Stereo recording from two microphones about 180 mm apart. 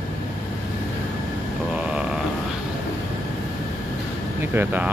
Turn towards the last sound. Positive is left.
turn(degrees=-10)  # may be behind; listen again after turning